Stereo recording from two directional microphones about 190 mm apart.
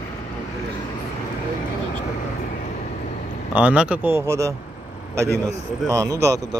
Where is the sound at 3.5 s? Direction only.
5° right (ahead or behind).